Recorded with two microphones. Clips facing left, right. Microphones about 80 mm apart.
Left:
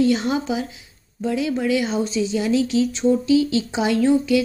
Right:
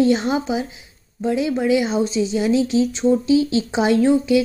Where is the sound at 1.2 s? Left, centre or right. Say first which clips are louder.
Right 2 dB; right.